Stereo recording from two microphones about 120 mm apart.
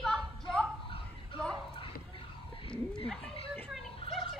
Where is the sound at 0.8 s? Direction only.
45° left (ahead or behind).